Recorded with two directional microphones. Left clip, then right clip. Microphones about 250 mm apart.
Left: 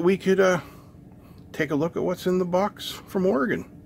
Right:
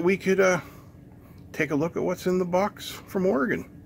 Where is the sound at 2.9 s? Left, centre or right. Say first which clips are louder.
Left 2 dB; centre.